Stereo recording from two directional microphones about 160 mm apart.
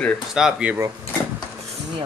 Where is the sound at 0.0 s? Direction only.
5° right (ahead or behind).